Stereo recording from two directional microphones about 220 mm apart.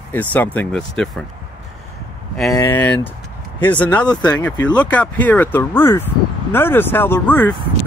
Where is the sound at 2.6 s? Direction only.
10° left (ahead or behind).